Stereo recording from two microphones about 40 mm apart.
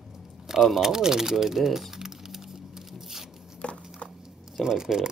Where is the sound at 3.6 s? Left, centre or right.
Left.